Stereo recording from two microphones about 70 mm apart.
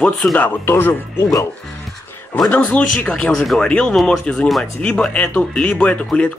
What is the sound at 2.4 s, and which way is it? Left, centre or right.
Speech, left.